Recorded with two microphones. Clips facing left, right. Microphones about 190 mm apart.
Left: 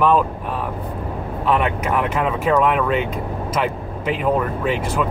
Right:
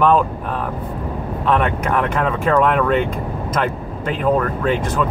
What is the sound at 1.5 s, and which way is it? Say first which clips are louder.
Speech: right 1 dB; 5° left (ahead or behind).